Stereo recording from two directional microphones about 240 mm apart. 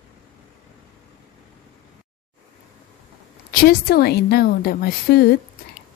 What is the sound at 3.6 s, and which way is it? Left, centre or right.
A woman's voice, left.